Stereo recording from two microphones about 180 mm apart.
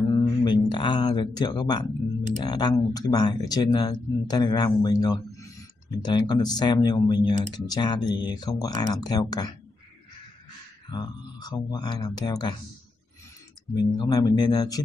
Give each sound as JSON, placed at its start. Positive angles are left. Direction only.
{"t": 0.1, "sound": "a sound", "side_deg": 25}
{"t": 2.4, "sound": "speech", "side_deg": 25}
{"t": 10.9, "sound": "speech", "side_deg": 25}
{"t": 13.9, "sound": "speech", "side_deg": 20}